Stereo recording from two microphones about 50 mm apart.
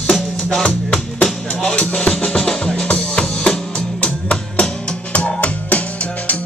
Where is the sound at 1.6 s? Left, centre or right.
Left.